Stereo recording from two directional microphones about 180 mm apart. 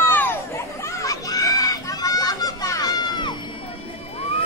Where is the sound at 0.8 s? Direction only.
15° left (ahead or behind).